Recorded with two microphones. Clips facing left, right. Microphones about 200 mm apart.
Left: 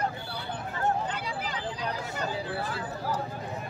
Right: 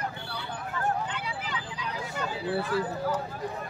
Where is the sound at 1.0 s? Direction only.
40° left (ahead or behind).